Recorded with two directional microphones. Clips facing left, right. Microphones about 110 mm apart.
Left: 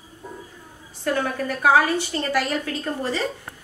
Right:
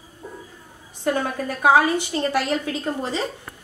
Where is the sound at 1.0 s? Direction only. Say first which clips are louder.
Right 1 dB; 20° right (ahead or behind).